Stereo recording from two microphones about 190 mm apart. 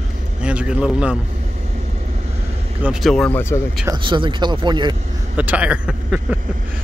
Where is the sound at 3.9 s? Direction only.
25° right (ahead or behind).